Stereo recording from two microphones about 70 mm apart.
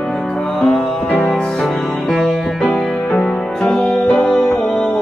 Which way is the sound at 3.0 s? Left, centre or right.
Centre.